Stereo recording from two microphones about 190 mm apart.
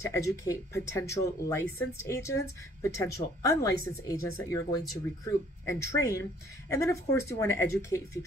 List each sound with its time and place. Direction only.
0.0 s a woman's voice: 15° left (ahead or behind)